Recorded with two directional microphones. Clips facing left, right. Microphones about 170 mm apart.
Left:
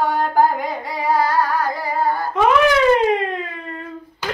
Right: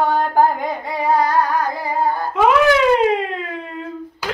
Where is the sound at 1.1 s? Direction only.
20° right (ahead or behind).